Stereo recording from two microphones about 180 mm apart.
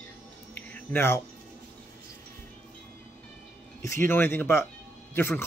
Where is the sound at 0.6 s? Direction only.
10° left (ahead or behind).